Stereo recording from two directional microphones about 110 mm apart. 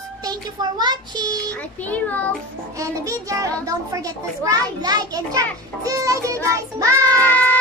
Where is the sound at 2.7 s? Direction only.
30° right (ahead or behind).